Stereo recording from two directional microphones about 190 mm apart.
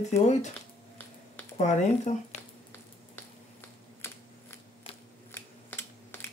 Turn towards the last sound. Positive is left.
turn(degrees=10)  # may be behind; listen again after turning